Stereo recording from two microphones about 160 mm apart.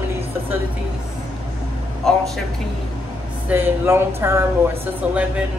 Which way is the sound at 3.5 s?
15° right (ahead or behind).